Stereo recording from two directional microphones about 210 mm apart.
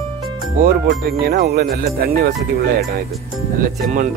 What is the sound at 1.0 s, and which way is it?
Speech, 45° right (ahead or behind).